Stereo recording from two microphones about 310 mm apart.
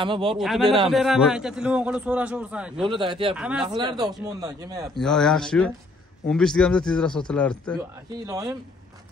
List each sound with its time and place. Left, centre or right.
0.0 s a man's voice: centre
0.4 s a man's voice: centre
2.9 s a man's voice: centre
3.3 s a man's voice: centre
3.6 s a man's voice: centre
4.9 s a man's voice: centre
8.3 s a man's voice: centre